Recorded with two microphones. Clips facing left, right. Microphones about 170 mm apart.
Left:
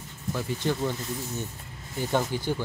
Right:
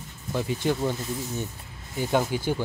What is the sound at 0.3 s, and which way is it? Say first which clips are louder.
Speech: right 2 dB; 20° right (ahead or behind).